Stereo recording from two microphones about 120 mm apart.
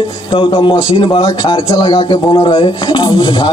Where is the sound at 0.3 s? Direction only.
45° left (ahead or behind).